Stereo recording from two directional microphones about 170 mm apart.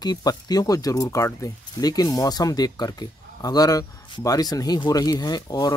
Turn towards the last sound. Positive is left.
turn(degrees=20)  # may be behind; listen again after turning